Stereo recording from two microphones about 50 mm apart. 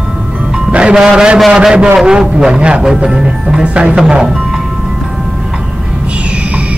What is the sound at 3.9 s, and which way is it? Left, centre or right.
Speech, centre.